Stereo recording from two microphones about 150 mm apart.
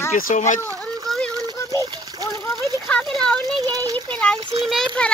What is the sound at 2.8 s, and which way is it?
Speech, 5° left (ahead or behind).